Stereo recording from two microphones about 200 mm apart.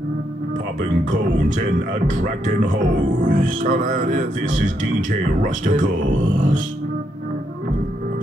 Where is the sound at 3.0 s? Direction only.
40° right (ahead or behind).